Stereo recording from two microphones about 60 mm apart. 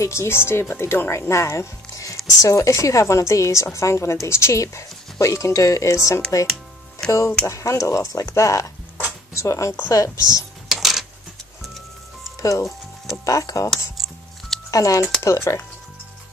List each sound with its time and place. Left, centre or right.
0.0 s a woman's voice: left
5.2 s a woman's voice: left
7.0 s speech: centre
7.4 s a woman's voice: left
9.8 s a woman's voice: left
10.7 s coin: centre
12.4 s a woman's voice: left
14.7 s speech: left
15.2 s a woman's voice: left